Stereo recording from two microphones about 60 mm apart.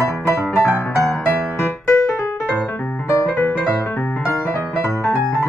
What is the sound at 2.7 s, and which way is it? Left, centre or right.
Piano, left.